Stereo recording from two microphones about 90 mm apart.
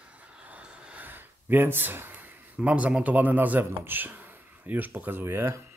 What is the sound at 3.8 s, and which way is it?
Speech, 20° right (ahead or behind).